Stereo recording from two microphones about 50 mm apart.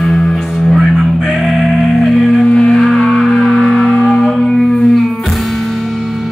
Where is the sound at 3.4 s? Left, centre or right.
Centre.